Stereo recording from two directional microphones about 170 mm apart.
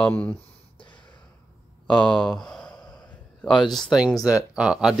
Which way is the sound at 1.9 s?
5° left (ahead or behind).